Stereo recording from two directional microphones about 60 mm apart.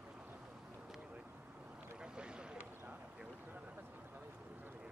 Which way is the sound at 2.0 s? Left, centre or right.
Centre.